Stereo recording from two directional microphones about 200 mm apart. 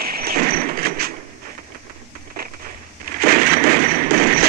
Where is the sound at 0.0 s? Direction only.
50° right (ahead or behind).